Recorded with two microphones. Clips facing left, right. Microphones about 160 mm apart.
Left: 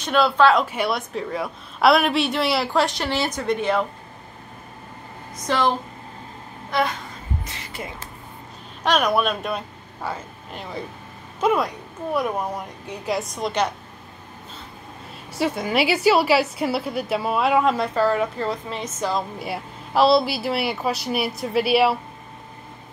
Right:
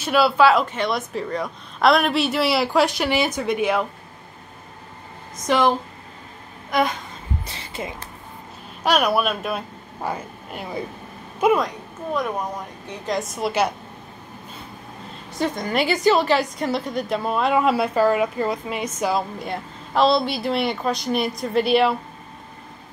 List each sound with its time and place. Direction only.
0.0 s speech: 5° right (ahead or behind)
0.7 s a woman's voice: 10° left (ahead or behind); by 3.8 s 10° right (ahead or behind)
5.5 s speech: 15° right (ahead or behind)
7.4 s music: 30° right (ahead or behind)
8.8 s a woman's voice: 10° right (ahead or behind)
11.5 s a woman's voice: 10° left (ahead or behind)
15.3 s a woman's voice: 10° left (ahead or behind); by 19.2 s 10° right (ahead or behind)
19.3 s a woman's voice: 5° left (ahead or behind)